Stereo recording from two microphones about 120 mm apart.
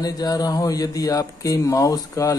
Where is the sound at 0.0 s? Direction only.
35° left (ahead or behind).